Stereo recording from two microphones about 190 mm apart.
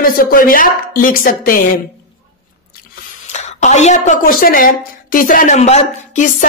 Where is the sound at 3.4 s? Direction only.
35° left (ahead or behind).